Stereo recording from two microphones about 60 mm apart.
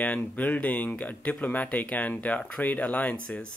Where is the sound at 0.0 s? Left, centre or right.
Left.